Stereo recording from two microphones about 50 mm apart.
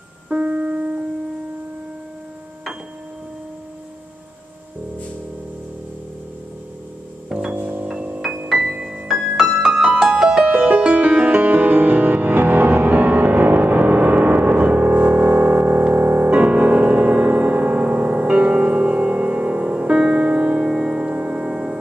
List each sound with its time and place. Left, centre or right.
0.3 s music: right
7.2 s music: centre
7.6 s music: right
8.5 s music: centre
10.5 s music: right
20.6 s music: centre